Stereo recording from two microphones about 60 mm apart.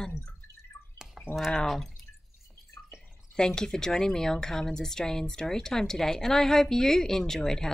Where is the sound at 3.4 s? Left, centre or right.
Centre.